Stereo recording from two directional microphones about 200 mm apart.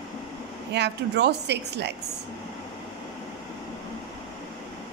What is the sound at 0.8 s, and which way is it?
A woman's voice, 60° right (ahead or behind).